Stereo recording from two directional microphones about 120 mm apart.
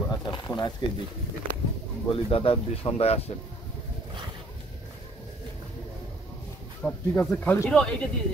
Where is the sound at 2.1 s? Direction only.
50° left (ahead or behind).